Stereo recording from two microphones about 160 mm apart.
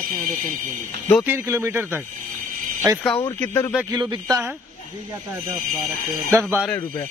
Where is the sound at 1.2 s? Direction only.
15° right (ahead or behind).